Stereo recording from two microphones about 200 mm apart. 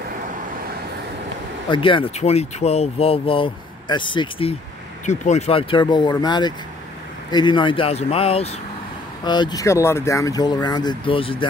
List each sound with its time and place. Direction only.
1.7 s speech: 25° left (ahead or behind)